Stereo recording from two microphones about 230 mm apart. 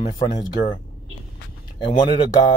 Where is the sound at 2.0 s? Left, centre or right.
Centre.